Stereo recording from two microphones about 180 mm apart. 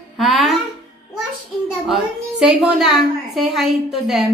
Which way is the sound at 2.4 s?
5° right (ahead or behind).